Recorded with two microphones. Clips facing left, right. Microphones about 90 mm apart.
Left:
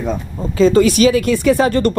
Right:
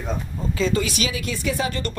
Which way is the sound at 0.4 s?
40° left (ahead or behind).